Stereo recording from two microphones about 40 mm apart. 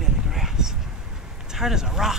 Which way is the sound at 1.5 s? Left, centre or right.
Centre.